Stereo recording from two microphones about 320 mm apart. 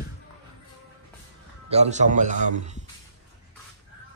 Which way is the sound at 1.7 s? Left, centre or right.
Right.